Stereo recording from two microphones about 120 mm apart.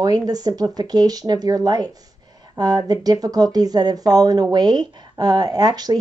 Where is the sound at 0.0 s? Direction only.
30° right (ahead or behind).